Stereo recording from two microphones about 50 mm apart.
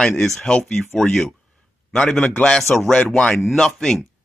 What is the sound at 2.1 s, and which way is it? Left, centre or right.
Speech, left.